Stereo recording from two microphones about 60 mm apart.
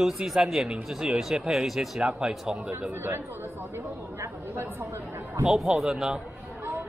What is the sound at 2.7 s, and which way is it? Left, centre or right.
Speech, right.